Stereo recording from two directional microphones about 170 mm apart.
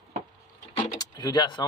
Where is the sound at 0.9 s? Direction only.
25° left (ahead or behind).